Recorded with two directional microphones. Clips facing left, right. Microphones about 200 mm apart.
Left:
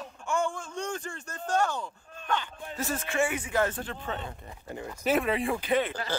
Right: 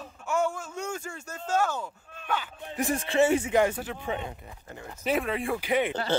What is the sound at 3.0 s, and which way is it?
Speech, 30° right (ahead or behind).